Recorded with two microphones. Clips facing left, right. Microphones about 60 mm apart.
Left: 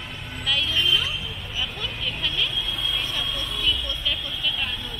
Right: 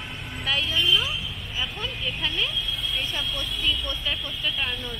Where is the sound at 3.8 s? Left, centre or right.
Right.